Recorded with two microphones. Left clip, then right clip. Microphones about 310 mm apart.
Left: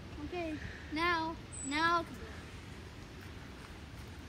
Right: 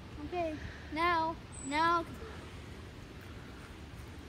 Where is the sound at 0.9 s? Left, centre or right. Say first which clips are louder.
Right 3 dB; right.